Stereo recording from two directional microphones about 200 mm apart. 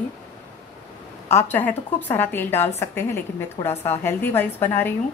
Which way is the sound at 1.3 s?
10° left (ahead or behind).